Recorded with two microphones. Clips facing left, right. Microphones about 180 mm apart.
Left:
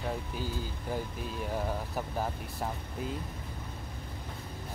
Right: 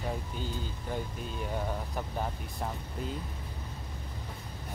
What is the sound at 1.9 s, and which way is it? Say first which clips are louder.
Speech: left 1 dB; 5° left (ahead or behind).